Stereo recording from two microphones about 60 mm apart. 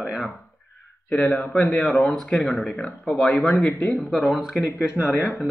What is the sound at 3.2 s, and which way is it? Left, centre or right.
Speech, left.